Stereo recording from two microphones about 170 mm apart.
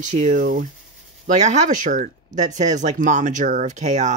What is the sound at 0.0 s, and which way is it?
Speech, 45° right (ahead or behind).